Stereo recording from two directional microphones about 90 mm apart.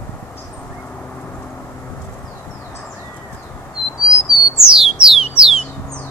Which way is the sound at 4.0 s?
10° right (ahead or behind).